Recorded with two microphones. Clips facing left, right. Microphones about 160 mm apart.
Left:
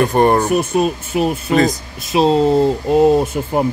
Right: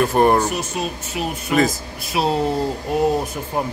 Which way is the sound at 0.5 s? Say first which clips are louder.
Left 9 dB; 55° left (ahead or behind).